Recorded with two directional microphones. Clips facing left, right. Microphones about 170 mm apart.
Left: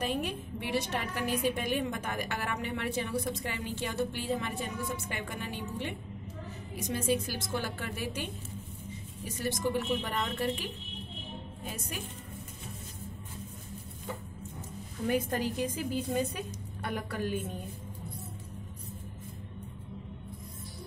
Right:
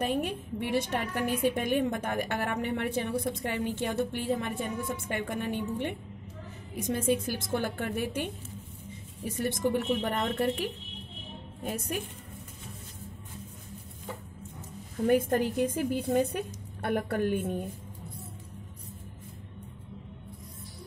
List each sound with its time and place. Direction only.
0.0 s a woman's voice: 50° right (ahead or behind)
9.4 s a woman's voice: 55° right (ahead or behind)
15.0 s a woman's voice: 50° right (ahead or behind)